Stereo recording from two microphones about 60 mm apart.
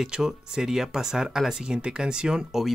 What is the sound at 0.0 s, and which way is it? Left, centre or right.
Speech, centre.